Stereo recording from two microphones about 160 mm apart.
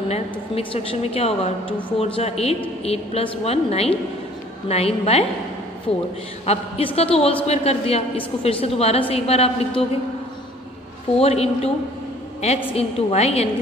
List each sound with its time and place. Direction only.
0.1 s a woman's voice: 40° left (ahead or behind)
11.1 s a woman's voice: 40° left (ahead or behind)